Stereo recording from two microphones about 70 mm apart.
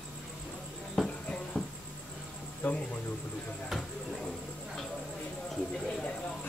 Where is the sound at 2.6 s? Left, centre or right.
Left.